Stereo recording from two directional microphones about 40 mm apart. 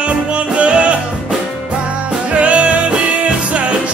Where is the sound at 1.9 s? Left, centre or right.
Right.